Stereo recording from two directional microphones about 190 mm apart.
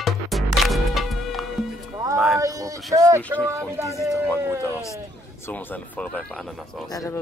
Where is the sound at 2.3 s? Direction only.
20° right (ahead or behind).